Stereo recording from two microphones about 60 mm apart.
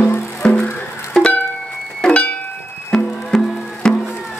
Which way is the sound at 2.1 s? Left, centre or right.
Left.